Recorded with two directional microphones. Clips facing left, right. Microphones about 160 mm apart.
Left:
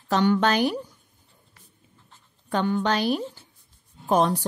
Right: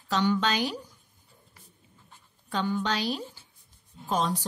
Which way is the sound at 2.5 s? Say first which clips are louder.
Left 5 dB; 55° left (ahead or behind).